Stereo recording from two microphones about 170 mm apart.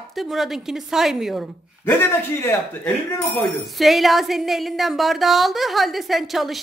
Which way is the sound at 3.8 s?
Centre (ahead or behind).